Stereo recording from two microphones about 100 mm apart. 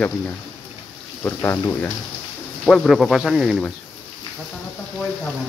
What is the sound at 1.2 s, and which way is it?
Speech, 25° left (ahead or behind).